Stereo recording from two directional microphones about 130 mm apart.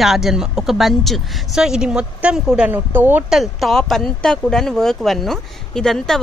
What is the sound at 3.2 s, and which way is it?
Speech, centre (ahead or behind).